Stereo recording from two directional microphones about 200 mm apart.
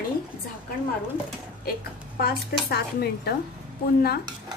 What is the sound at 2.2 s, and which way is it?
A woman's voice, 50° left (ahead or behind).